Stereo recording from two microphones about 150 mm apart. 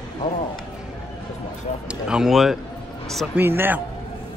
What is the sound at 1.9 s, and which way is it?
Speech, 5° right (ahead or behind).